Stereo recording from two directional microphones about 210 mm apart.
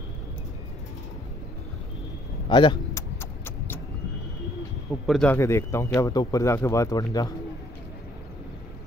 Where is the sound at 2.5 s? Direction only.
20° left (ahead or behind).